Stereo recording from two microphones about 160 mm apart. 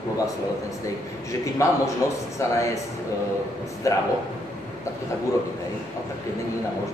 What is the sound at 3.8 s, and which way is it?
Speech, 20° left (ahead or behind).